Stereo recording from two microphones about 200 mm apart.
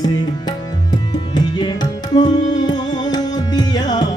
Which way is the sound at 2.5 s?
20° left (ahead or behind).